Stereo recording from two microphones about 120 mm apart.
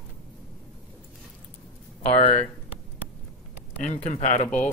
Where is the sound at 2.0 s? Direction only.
65° left (ahead or behind).